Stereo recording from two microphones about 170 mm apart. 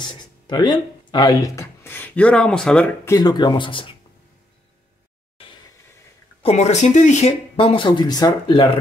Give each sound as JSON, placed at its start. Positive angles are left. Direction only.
{"t": 0.0, "sound": "speech", "side_deg": 25}
{"t": 3.1, "sound": "speech", "side_deg": 25}
{"t": 6.4, "sound": "speech", "side_deg": 40}